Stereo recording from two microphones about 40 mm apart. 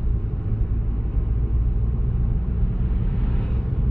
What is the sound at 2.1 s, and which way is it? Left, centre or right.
Vehicle, left.